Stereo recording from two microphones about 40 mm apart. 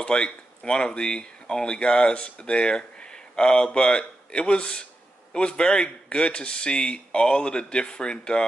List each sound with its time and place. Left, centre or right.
0.0 s speech: left